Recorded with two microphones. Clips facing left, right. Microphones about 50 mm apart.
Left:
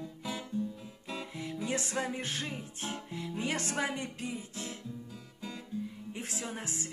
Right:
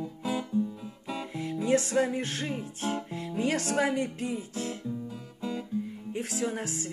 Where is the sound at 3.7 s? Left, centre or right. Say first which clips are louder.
Right 7 dB; centre.